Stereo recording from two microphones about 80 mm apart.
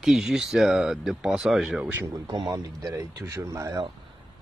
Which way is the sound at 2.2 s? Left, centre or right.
Right.